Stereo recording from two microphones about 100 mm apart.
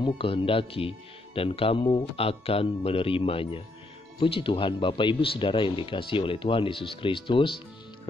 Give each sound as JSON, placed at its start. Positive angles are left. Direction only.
{"t": 0.0, "sound": "speech", "side_deg": 65}